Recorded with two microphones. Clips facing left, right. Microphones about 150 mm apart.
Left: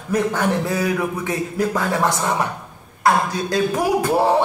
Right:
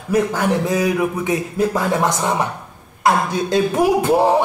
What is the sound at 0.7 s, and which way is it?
A man's voice, 20° right (ahead or behind).